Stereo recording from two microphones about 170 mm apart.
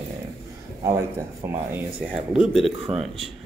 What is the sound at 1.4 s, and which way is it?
Speech, 15° right (ahead or behind).